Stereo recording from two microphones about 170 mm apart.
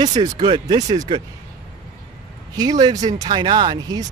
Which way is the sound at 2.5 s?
25° right (ahead or behind).